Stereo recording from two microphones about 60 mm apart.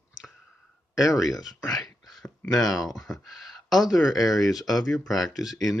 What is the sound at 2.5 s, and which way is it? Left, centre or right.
Speech, centre.